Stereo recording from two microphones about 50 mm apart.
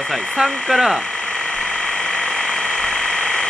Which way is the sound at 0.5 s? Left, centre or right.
Centre.